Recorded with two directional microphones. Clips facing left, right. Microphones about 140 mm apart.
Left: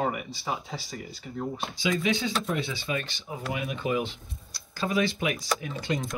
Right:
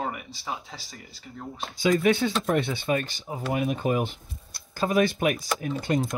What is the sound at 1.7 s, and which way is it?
Speech, 50° right (ahead or behind).